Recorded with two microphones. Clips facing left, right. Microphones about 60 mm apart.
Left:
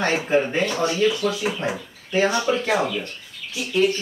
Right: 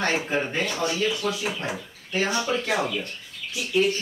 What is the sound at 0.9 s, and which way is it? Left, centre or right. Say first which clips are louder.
Speech: left 5 dB; left.